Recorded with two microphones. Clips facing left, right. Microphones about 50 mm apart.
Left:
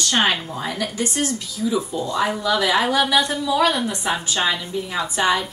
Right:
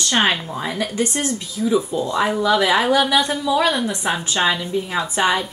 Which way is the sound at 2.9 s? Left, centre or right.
Centre.